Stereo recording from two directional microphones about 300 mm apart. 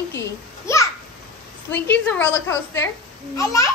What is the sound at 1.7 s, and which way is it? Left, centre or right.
A woman's voice, centre.